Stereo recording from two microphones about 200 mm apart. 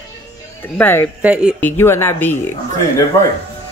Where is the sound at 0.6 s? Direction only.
10° left (ahead or behind).